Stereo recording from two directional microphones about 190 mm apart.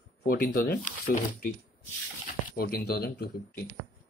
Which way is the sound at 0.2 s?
55° left (ahead or behind).